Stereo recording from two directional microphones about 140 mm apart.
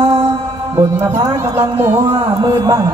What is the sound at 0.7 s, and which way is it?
Speech, 20° right (ahead or behind).